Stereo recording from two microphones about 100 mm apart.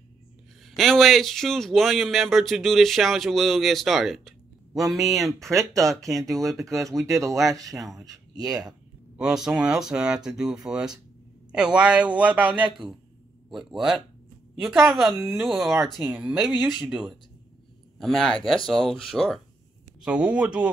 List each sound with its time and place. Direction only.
0.7 s speech: 5° left (ahead or behind)
5.7 s speech: 35° right (ahead or behind)
9.1 s speech: 5° right (ahead or behind)
13.5 s speech: 5° right (ahead or behind)
20.3 s speech: 10° right (ahead or behind)